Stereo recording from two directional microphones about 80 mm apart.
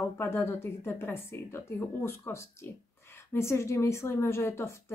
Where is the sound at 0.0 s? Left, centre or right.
Left.